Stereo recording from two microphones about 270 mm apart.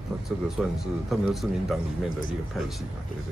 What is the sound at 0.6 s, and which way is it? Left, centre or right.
A man's voice, centre.